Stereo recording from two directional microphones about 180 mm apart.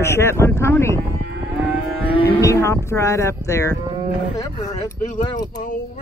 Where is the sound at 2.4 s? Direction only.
15° left (ahead or behind).